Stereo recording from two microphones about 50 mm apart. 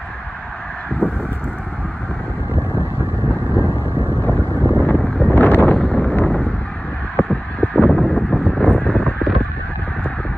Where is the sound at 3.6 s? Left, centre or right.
Left.